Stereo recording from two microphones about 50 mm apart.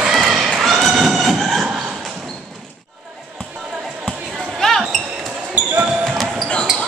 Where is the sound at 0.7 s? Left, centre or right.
Centre.